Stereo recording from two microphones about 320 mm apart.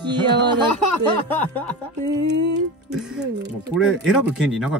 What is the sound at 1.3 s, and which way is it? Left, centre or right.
Speech, centre.